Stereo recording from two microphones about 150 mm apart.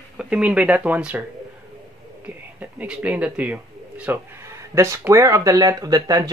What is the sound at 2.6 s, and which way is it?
Speech, 10° right (ahead or behind).